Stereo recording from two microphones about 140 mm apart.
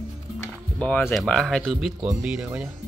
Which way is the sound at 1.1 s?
Centre (ahead or behind).